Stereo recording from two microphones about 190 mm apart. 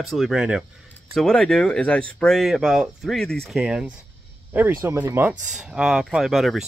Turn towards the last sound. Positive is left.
turn(degrees=0)  # may be behind; listen again after turning